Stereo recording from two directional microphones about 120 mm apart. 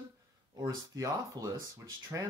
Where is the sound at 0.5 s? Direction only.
30° right (ahead or behind).